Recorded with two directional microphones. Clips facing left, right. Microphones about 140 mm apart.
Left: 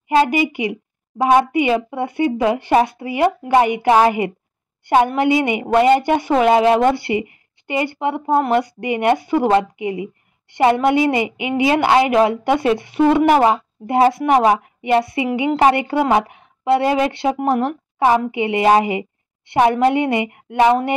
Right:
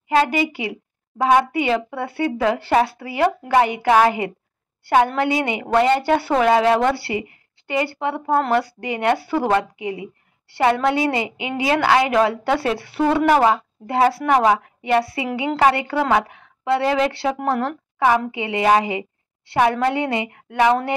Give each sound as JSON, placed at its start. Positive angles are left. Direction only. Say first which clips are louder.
{"t": 0.5, "sound": "speech", "louder": "left 5 dB", "side_deg": 20}